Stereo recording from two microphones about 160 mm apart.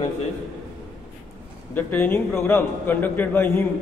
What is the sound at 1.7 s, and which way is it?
A man's voice, 10° left (ahead or behind).